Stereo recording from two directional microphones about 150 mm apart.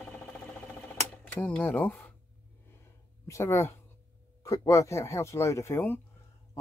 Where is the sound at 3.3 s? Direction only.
20° left (ahead or behind).